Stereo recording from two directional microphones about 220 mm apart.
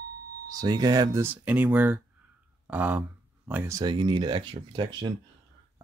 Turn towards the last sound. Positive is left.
turn(degrees=-20)  # may be behind; listen again after turning